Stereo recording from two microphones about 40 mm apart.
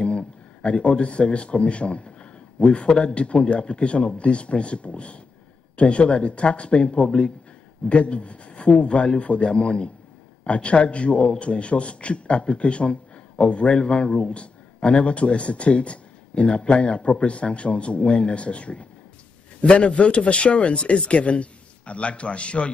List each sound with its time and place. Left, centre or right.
0.0 s a man's voice: left